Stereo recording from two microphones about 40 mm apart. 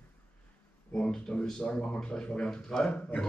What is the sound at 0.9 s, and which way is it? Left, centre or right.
Speech, left.